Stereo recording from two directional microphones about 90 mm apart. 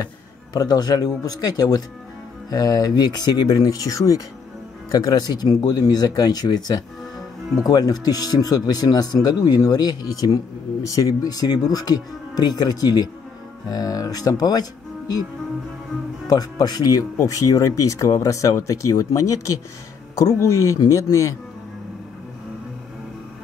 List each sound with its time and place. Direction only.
0.6 s speech: 45° left (ahead or behind)
16.3 s speech: 45° left (ahead or behind)